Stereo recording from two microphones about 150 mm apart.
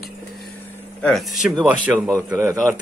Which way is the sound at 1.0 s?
5° left (ahead or behind).